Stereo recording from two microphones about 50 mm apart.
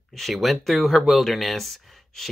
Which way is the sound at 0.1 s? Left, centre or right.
Centre.